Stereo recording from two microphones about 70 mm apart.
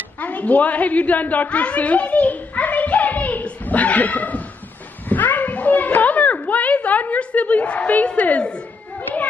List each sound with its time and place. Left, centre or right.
0.2 s a woman's voice: left
5.0 s children playing: left